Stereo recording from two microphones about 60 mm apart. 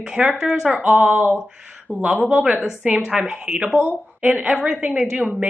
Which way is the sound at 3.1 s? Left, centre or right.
Centre.